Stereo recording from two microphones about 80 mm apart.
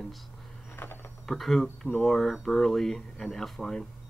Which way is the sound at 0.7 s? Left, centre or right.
Left.